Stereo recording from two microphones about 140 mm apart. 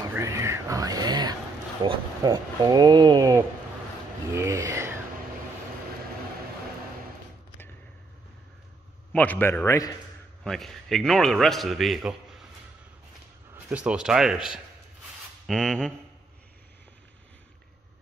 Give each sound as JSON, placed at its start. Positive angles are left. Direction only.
{"t": 0.1, "sound": "a sound", "side_deg": -20}
{"t": 1.8, "sound": "speech", "side_deg": -30}
{"t": 9.1, "sound": "a man's voice", "side_deg": 10}
{"t": 10.4, "sound": "a man's voice", "side_deg": 0}
{"t": 13.7, "sound": "a man's voice", "side_deg": -5}